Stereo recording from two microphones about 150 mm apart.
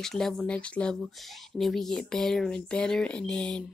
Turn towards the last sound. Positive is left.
turn(degrees=5)  # may be behind; listen again after turning